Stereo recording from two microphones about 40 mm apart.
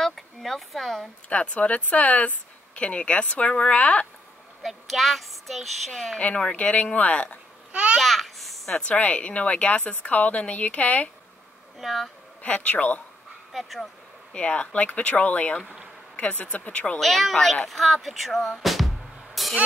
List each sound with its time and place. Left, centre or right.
0.0 s a sound: centre
1.3 s speech: left
4.6 s a sound: centre
5.9 s speech: centre
6.5 s speech: left
7.7 s a child's voice: right
8.0 s babbling: centre
8.7 s speech: left
11.8 s a sound: centre
12.4 s speech: left
13.5 s speech: centre
14.3 s speech: left
17.0 s a sound: centre
18.6 s music: centre